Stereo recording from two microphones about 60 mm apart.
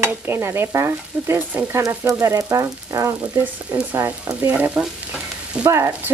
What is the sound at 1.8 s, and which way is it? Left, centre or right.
Speech, right.